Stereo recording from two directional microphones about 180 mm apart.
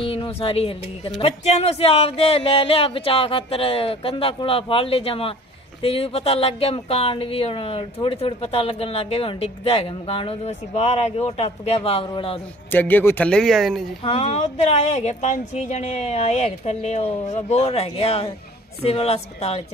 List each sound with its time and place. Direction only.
0.0 s speech: 30° left (ahead or behind)
12.7 s speech: 10° left (ahead or behind)
14.0 s speech: 35° left (ahead or behind)